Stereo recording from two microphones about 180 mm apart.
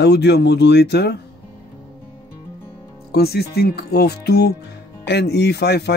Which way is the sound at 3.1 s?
60° left (ahead or behind).